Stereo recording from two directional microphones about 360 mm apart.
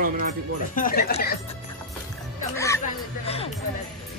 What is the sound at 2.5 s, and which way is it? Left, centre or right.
Music, centre.